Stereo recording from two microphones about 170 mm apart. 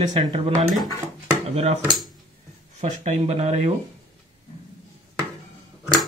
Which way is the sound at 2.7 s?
40° right (ahead or behind).